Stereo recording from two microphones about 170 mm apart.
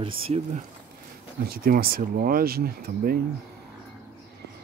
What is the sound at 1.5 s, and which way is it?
Speech, 60° right (ahead or behind).